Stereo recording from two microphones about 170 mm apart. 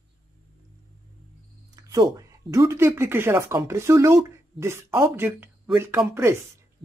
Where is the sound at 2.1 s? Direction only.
20° right (ahead or behind).